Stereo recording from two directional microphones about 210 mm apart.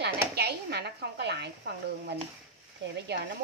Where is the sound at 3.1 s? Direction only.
50° right (ahead or behind).